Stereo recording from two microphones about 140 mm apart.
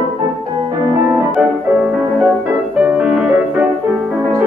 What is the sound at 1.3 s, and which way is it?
Music, 5° right (ahead or behind).